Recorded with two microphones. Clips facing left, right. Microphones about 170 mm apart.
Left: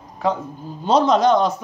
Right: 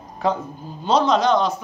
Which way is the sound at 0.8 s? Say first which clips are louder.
Left 2 dB; 45° left (ahead or behind).